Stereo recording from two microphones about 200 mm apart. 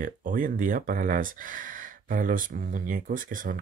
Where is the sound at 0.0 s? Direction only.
45° right (ahead or behind).